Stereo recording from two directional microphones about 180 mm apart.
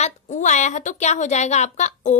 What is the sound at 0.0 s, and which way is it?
A woman's voice, 40° left (ahead or behind).